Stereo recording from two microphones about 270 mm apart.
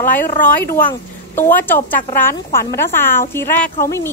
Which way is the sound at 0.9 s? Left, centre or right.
Centre.